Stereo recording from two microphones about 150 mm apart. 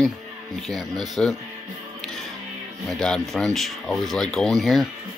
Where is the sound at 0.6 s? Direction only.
Centre (ahead or behind).